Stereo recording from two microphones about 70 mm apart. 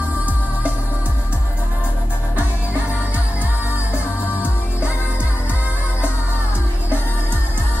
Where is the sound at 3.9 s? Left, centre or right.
Left.